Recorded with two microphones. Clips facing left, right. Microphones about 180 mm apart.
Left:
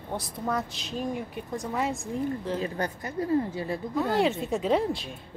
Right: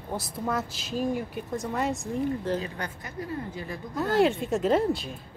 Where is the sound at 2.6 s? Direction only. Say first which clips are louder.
Left 5 dB; 35° left (ahead or behind).